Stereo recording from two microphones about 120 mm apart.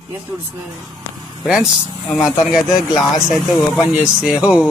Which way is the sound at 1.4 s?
5° right (ahead or behind).